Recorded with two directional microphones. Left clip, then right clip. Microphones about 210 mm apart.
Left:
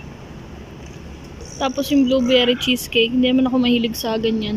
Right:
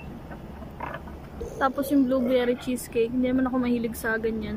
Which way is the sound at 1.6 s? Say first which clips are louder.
Left 5 dB; centre (ahead or behind).